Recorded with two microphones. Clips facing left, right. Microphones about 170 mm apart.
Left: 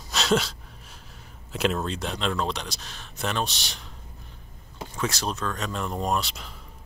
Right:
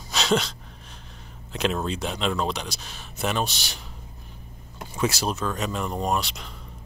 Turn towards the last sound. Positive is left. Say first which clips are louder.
# right 1 dB
turn(degrees=0)  # may be behind; listen again after turning